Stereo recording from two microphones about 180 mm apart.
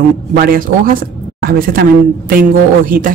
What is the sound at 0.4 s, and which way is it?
Speech, 50° right (ahead or behind).